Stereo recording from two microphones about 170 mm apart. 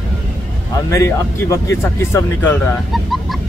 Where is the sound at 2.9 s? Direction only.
Centre (ahead or behind).